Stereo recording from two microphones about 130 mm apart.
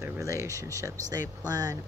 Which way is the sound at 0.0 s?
20° right (ahead or behind).